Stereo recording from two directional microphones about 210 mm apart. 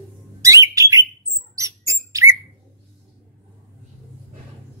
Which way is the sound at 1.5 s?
15° right (ahead or behind).